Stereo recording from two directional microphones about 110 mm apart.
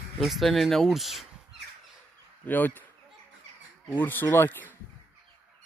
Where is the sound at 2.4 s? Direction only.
15° left (ahead or behind).